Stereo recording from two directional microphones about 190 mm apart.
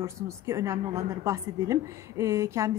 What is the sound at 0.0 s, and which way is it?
A woman's voice, 15° right (ahead or behind).